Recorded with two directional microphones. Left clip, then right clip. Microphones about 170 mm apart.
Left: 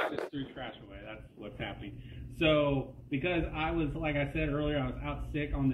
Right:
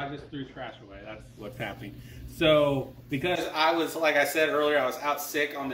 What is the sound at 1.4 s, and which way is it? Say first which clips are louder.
Speech: right 5 dB; 20° right (ahead or behind).